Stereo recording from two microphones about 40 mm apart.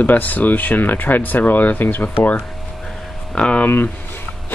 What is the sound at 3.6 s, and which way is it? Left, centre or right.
Speech, left.